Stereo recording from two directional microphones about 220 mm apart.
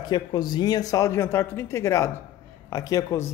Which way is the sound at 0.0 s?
20° left (ahead or behind).